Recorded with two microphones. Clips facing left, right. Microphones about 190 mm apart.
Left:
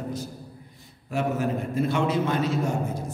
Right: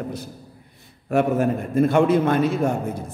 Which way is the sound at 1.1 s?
55° right (ahead or behind).